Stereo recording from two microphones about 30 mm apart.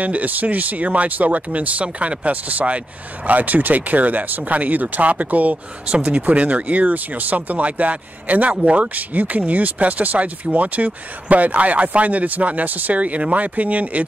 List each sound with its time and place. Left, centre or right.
0.0 s speech: right
3.3 s speech: right
5.9 s speech: right
6.2 s speech: right
8.9 s speech: right